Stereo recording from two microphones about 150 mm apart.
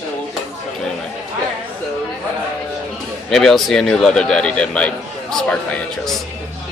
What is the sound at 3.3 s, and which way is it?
A man's voice, centre (ahead or behind).